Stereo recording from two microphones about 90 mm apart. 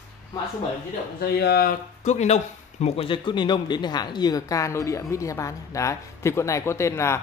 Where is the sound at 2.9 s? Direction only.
80° left; by 7.2 s 30° left (ahead or behind).